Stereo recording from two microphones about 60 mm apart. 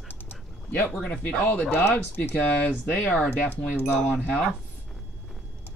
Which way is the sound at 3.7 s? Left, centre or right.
Left.